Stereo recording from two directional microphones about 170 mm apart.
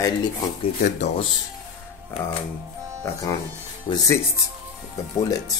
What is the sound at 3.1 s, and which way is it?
Speech, 15° left (ahead or behind).